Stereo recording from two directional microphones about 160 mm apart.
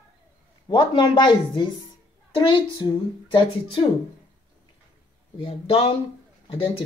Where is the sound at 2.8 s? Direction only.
30° left (ahead or behind).